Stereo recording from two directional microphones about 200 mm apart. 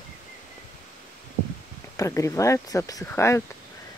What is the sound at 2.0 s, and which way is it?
Speech, 15° left (ahead or behind).